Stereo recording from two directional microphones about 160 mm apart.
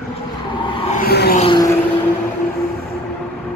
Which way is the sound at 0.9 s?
75° left (ahead or behind).